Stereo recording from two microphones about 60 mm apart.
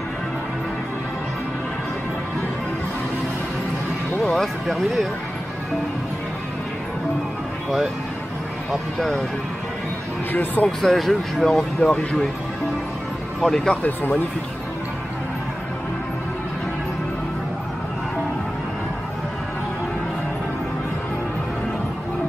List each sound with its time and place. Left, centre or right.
4.2 s speech: centre
10.3 s speech: left
10.8 s speech: centre
11.9 s speech: left
13.4 s speech: centre
13.8 s speech: left